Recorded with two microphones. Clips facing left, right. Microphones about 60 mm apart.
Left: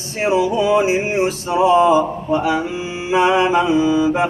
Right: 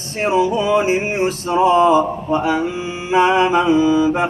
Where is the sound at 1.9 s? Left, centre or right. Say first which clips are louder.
Even; right.